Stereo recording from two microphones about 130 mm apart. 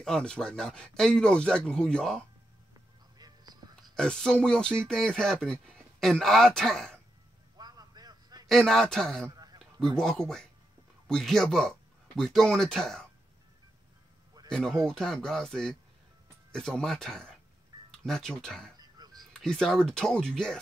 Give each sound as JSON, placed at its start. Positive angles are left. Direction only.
{"t": 0.0, "sound": "speech", "side_deg": 5}
{"t": 3.2, "sound": "a sound", "side_deg": -30}
{"t": 3.8, "sound": "speech", "side_deg": 5}
{"t": 7.5, "sound": "a sound", "side_deg": -30}
{"t": 8.5, "sound": "speech", "side_deg": 0}
{"t": 9.3, "sound": "a sound", "side_deg": -30}
{"t": 9.9, "sound": "speech", "side_deg": 5}
{"t": 14.9, "sound": "speech", "side_deg": 5}
{"t": 18.8, "sound": "music", "side_deg": -30}
{"t": 19.4, "sound": "speech", "side_deg": 5}